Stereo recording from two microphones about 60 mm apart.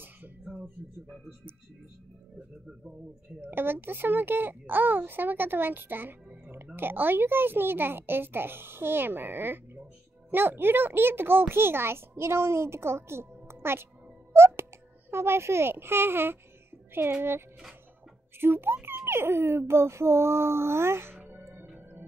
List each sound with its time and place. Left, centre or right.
3.3 s a child's voice: right
18.4 s a child's voice: right
21.2 s music: right